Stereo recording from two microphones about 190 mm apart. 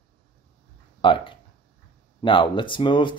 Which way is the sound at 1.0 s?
25° left (ahead or behind).